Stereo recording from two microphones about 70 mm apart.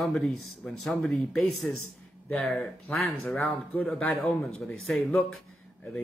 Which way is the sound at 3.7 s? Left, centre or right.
Left.